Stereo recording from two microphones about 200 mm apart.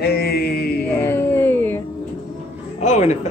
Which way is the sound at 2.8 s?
35° left (ahead or behind).